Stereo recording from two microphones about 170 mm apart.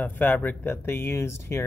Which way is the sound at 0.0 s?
10° left (ahead or behind).